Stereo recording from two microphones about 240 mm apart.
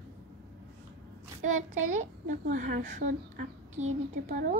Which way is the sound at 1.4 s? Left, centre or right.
Right.